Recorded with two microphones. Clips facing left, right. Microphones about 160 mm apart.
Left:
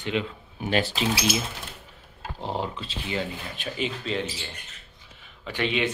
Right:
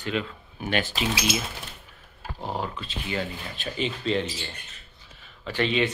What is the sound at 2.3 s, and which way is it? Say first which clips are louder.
Speech: left 1 dB; 25° left (ahead or behind).